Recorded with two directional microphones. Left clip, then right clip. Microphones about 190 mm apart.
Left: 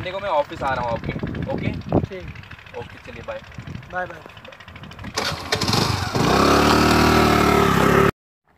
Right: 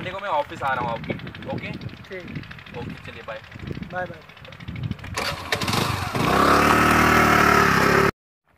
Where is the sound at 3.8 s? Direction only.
25° right (ahead or behind).